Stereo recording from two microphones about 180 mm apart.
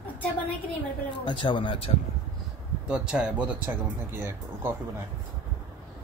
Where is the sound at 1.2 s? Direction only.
25° left (ahead or behind).